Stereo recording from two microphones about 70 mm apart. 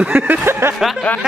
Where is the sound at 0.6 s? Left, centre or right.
Right.